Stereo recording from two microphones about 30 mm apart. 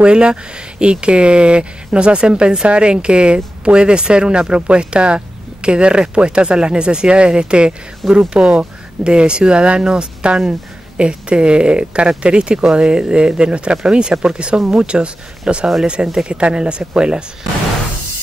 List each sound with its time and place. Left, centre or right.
0.0 s speech: right